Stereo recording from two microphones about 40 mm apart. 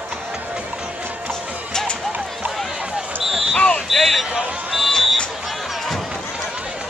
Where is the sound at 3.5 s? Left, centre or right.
Left.